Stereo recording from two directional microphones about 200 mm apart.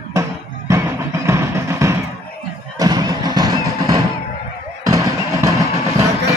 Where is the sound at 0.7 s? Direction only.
15° right (ahead or behind).